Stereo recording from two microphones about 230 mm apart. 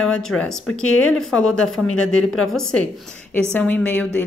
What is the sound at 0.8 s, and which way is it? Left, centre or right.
Speech, left.